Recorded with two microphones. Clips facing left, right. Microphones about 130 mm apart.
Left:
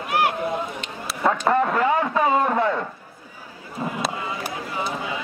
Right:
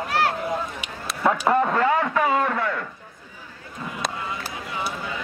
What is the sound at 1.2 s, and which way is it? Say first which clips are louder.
Speech: even; 5° right (ahead or behind).